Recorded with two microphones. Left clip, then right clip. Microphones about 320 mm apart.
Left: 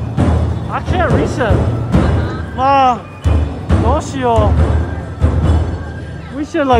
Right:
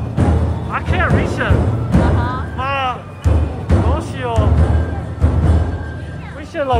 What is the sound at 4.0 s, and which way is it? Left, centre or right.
Music, centre.